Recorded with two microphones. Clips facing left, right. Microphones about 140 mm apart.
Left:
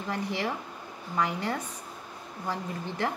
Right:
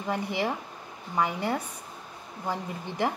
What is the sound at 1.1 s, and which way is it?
Speech, 10° right (ahead or behind).